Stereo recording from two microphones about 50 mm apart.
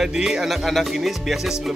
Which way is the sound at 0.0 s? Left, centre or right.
Centre.